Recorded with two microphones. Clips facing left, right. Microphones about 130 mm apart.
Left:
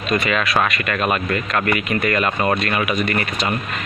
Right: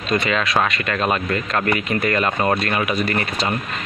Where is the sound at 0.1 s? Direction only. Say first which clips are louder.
Even; 25° right (ahead or behind).